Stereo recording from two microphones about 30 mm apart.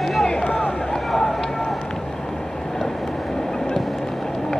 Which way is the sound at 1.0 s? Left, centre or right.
Centre.